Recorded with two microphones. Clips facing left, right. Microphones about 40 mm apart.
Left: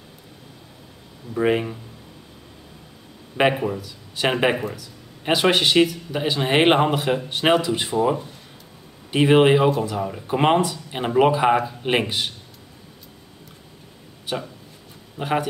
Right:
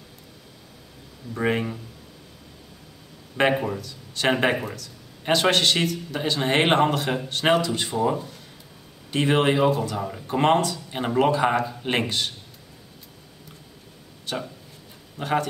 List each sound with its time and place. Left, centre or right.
1.4 s speech: centre
3.4 s speech: centre
14.3 s speech: centre